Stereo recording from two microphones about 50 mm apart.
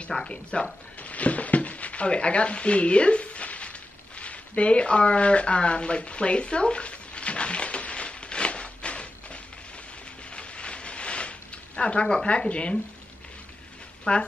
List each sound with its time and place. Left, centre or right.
0.2 s speech: centre
4.2 s a sound: left
14.1 s speech: left